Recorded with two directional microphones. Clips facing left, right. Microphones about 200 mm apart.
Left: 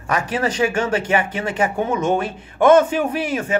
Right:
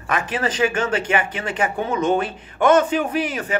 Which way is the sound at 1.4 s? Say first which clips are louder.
Left 2 dB; 25° left (ahead or behind).